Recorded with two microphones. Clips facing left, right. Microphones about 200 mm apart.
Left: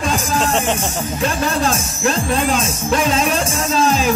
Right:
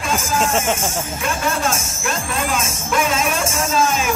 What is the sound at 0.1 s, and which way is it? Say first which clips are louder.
Speech: right 2 dB; 35° left (ahead or behind).